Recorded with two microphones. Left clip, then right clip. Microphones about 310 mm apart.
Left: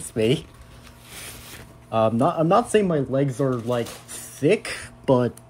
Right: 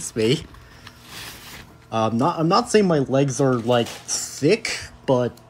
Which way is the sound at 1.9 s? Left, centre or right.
Centre.